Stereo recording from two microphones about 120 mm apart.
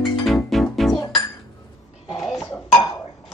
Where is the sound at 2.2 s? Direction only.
Centre (ahead or behind).